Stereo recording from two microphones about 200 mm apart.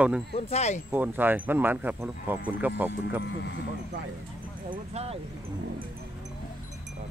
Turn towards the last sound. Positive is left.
turn(degrees=-30)  # may be behind; listen again after turning